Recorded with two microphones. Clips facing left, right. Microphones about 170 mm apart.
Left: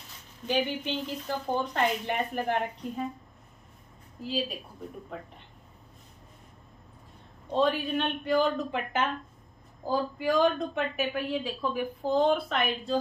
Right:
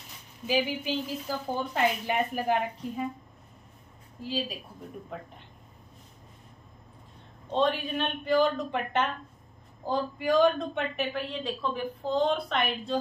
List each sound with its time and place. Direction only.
0.5 s a woman's voice: 5° right (ahead or behind)
4.2 s a woman's voice: centre (ahead or behind)
7.5 s a woman's voice: centre (ahead or behind)